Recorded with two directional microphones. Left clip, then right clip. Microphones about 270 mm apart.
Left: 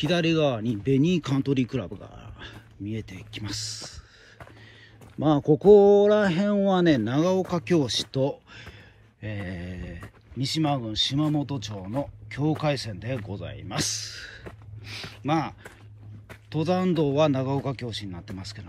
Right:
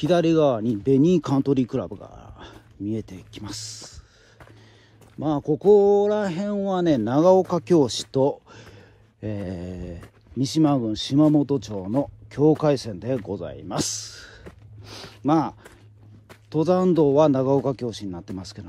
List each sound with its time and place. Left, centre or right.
0.0 s speech: centre
11.1 s speech: right
11.4 s speech: centre
11.7 s speech: right
12.3 s speech: centre